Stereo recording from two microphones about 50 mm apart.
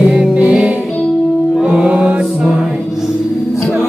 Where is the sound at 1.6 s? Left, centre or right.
Right.